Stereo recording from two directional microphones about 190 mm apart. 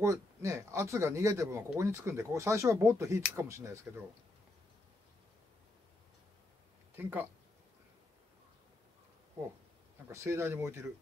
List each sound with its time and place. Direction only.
0.0 s a man's voice: 15° right (ahead or behind)
7.0 s a man's voice: 10° right (ahead or behind)
10.1 s a man's voice: 15° right (ahead or behind)